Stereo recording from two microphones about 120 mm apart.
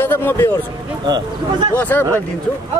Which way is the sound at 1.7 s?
15° left (ahead or behind).